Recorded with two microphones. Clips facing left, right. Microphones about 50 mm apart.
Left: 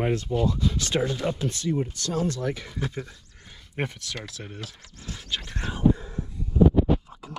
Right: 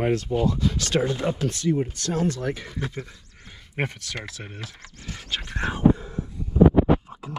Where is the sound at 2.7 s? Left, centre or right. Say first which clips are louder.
Even; centre.